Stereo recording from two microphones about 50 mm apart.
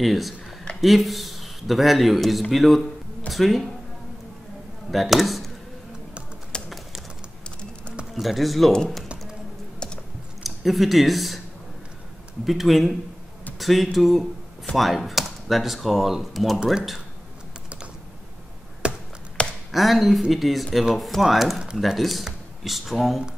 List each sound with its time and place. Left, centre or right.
0.0 s a man's voice: centre
4.9 s speech: centre
6.5 s bird: centre
8.1 s speech: centre
10.4 s speech: centre
12.4 s speech: centre
18.8 s tap: right
19.4 s a sound: left
19.7 s speech: centre